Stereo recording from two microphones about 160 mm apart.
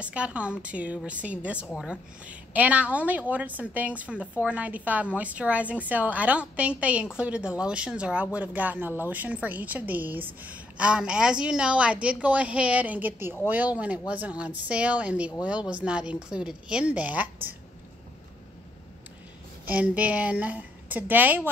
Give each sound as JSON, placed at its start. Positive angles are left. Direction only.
{"t": 0.0, "sound": "speech", "side_deg": -10}
{"t": 19.7, "sound": "speech", "side_deg": -10}